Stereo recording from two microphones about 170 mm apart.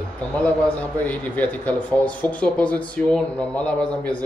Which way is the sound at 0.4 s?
10° left (ahead or behind).